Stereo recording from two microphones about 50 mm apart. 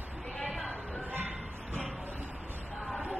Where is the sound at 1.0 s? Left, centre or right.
Right.